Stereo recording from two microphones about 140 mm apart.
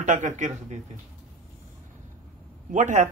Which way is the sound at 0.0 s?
60° right (ahead or behind).